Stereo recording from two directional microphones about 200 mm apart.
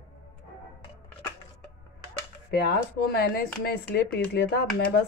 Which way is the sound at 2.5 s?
55° left (ahead or behind).